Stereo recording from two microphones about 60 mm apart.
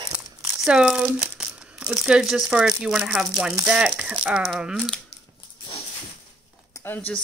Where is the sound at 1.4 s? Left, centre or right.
Centre.